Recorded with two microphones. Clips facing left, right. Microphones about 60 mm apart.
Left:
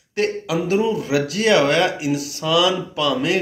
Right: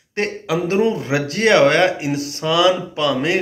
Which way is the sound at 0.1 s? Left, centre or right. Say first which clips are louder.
Even; right.